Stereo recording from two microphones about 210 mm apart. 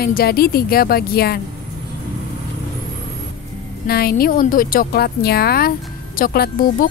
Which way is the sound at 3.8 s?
45° left (ahead or behind).